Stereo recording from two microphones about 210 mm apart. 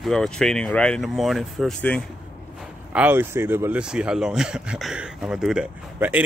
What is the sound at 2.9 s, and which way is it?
Speech, 10° right (ahead or behind).